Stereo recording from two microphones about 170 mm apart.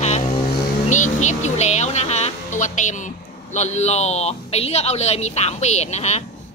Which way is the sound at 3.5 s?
40° left (ahead or behind).